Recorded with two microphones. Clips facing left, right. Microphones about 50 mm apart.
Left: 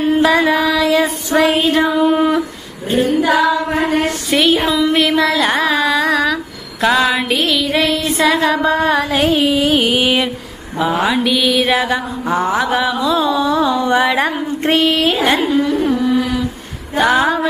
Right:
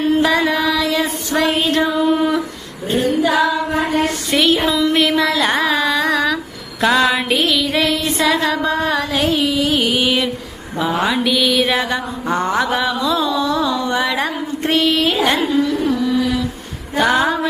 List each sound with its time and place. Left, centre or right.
0.0 s mantra: centre
1.3 s music: centre
2.0 s carnatic music: left
3.3 s female singing: left
4.3 s music: centre
4.6 s a sound: centre
8.5 s music: centre
9.2 s carnatic music: left
11.1 s mantra: centre
13.7 s carnatic music: left
14.6 s music: centre
15.1 s mantra: centre
15.4 s carnatic music: left
17.0 s a sound: centre